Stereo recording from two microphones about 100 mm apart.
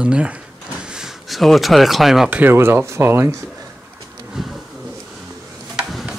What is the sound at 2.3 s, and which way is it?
Speech, 20° right (ahead or behind).